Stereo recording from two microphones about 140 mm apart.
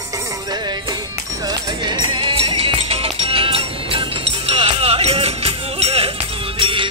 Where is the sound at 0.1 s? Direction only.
25° right (ahead or behind).